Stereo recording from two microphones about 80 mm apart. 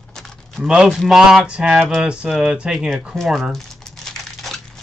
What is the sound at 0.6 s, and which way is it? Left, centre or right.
Speech, centre.